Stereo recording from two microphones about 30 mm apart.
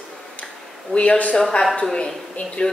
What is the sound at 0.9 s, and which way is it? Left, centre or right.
Speech, left.